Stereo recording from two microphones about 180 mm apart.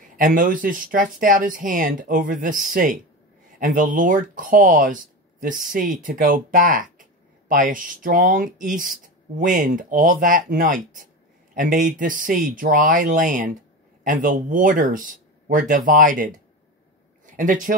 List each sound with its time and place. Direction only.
0.1 s speech: 50° right (ahead or behind)